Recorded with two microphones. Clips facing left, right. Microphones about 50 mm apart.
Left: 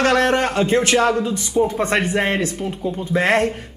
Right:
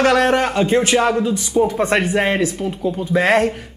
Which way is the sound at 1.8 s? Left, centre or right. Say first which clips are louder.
Right 2 dB; centre.